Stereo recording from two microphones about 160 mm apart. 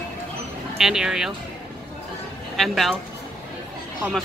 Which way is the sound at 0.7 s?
5° right (ahead or behind).